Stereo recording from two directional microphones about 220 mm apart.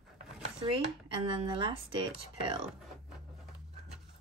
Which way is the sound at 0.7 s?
25° right (ahead or behind).